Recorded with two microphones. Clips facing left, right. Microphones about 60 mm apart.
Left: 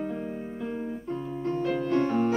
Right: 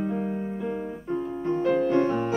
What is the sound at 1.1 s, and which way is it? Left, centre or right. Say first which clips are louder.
Music: right 5 dB; right.